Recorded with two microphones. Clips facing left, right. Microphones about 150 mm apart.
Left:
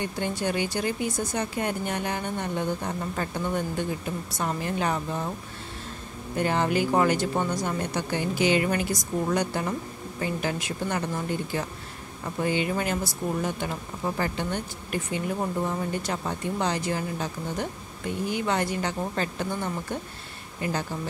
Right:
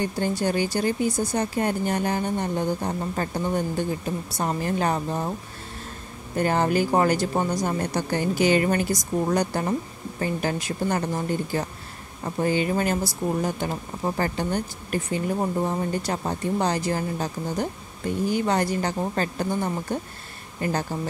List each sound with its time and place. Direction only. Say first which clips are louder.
0.0 s speech: right 4 dB; 35° right (ahead or behind)
6.3 s speech: right 3 dB; 45° right (ahead or behind)